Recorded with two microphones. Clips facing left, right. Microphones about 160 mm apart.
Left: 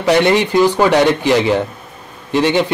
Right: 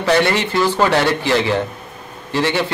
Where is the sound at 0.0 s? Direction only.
15° left (ahead or behind).